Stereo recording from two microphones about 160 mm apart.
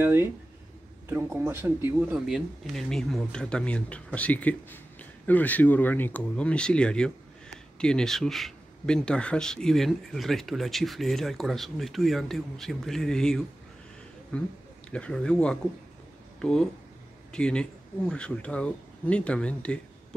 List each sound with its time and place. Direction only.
0.0 s speech: 15° right (ahead or behind); by 20.2 s 5° left (ahead or behind)